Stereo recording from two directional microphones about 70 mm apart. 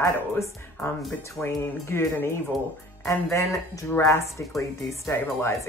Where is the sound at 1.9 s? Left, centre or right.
Left.